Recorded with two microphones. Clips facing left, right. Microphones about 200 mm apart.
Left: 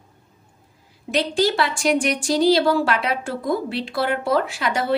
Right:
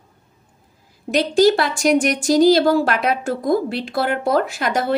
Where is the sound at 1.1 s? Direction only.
45° right (ahead or behind).